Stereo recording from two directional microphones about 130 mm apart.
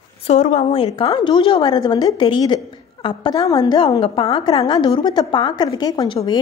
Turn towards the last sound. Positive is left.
turn(degrees=35)  # may be behind; listen again after turning